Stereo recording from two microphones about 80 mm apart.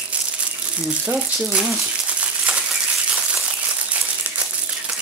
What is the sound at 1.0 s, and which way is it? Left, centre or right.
Speech, centre.